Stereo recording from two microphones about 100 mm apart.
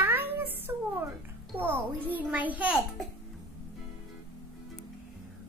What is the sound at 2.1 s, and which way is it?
Speech, 15° right (ahead or behind).